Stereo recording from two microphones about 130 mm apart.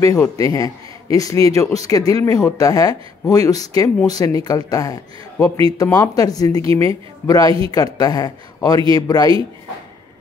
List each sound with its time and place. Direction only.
0.0 s a man's voice: 25° left (ahead or behind)